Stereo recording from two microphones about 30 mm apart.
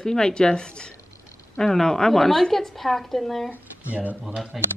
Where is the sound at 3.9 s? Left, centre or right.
Right.